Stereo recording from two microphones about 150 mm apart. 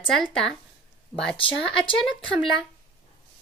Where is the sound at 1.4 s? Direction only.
35° left (ahead or behind).